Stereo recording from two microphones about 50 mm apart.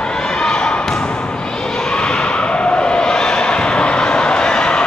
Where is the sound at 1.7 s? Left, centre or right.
Centre.